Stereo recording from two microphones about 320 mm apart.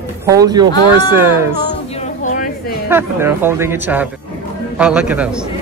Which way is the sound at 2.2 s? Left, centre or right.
Left.